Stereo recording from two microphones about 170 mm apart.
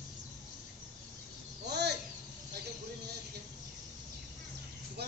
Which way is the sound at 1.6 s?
75° right (ahead or behind).